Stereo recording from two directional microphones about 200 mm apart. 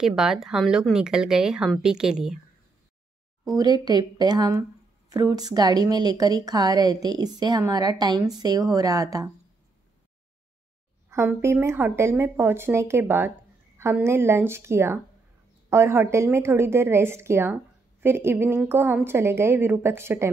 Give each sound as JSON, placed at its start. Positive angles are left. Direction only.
{"t": 0.0, "sound": "speech", "side_deg": 0}
{"t": 3.5, "sound": "a woman's voice", "side_deg": -20}
{"t": 11.1, "sound": "speech", "side_deg": -15}